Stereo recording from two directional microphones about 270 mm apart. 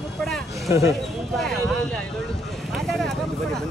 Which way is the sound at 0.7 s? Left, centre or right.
Centre.